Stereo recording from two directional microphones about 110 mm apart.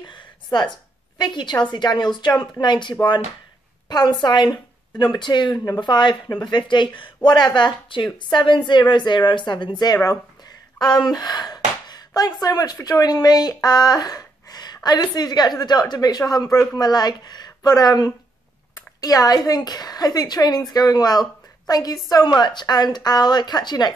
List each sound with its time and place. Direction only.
0.0 s a woman's voice: 45° left (ahead or behind)